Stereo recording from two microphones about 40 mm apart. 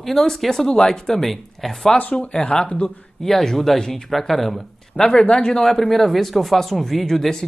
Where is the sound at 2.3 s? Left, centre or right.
Left.